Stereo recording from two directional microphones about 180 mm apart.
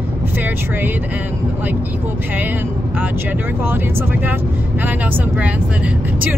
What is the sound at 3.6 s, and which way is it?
Speech, 10° right (ahead or behind).